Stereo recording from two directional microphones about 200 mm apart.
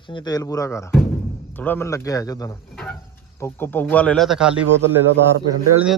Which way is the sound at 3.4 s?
10° left (ahead or behind).